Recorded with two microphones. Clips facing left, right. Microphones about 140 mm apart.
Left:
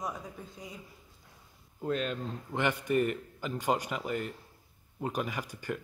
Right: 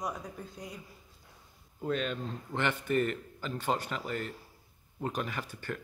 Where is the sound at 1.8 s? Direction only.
Centre (ahead or behind).